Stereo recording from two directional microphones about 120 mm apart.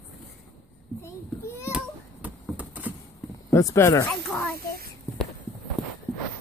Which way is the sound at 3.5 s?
25° left (ahead or behind).